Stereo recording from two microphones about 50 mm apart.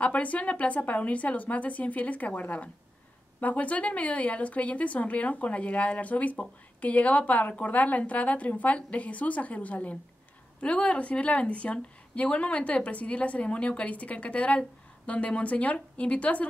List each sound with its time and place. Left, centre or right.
0.0 s a woman's voice: left